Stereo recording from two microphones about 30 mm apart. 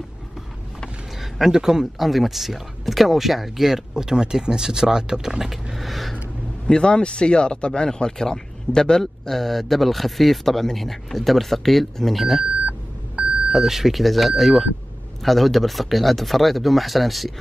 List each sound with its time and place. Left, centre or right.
1.4 s speech: centre
2.0 s speech: centre
3.9 s speech: right; by 6.1 s centre
6.7 s speech: left
9.0 s speech: centre
13.5 s speech: centre
14.0 s speech: centre